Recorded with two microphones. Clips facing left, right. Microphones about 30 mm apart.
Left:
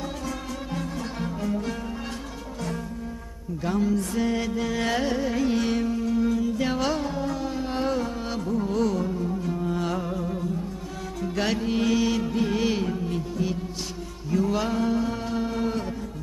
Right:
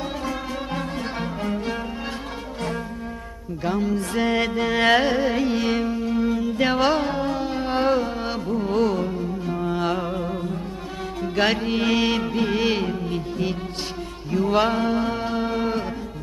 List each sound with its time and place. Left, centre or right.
0.7 s music: right
3.6 s music: right
4.1 s music: right
14.3 s mantra: right